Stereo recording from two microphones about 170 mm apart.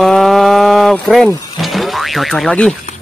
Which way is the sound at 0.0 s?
Centre (ahead or behind).